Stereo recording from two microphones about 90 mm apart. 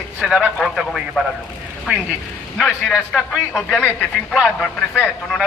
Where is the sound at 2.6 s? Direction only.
Centre (ahead or behind).